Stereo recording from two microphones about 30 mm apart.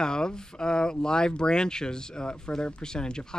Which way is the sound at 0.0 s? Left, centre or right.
Left.